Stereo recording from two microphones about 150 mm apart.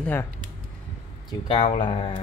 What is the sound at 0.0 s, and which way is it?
Speech, 15° left (ahead or behind).